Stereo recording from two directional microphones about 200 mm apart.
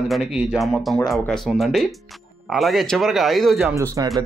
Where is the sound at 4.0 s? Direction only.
15° right (ahead or behind).